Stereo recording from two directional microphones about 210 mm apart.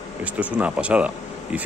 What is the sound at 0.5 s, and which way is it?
Speech, 5° right (ahead or behind).